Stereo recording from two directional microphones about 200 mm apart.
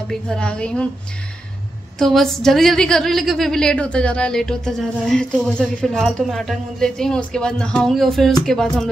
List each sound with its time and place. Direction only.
0.1 s a woman's voice: 5° left (ahead or behind)
2.0 s a woman's voice: centre (ahead or behind)